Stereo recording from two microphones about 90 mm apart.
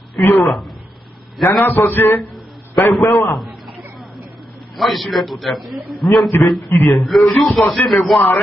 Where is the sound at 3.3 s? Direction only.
Centre (ahead or behind).